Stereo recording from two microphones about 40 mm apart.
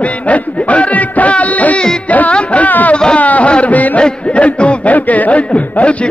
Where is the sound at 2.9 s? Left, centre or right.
Left.